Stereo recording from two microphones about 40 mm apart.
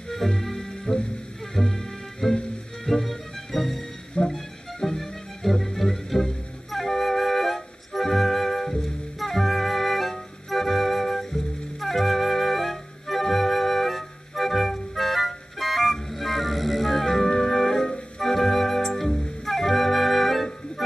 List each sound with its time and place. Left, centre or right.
0.1 s music: centre
4.2 s music: left
4.7 s music: centre
6.7 s flute: centre
10.5 s music: centre